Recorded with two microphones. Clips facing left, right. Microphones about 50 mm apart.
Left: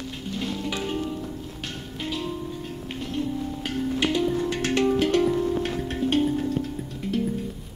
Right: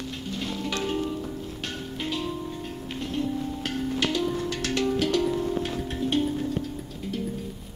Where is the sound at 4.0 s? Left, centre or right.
Left.